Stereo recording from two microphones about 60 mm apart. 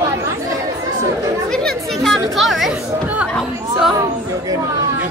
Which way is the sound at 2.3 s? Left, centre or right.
Centre.